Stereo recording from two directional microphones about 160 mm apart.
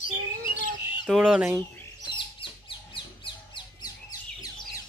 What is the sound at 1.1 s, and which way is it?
Speech, 5° right (ahead or behind).